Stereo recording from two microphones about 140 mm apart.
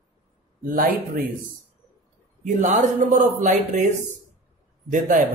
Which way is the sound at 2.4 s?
60° right (ahead or behind).